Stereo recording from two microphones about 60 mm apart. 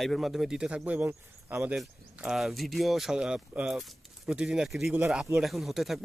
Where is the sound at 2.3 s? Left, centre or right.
Centre.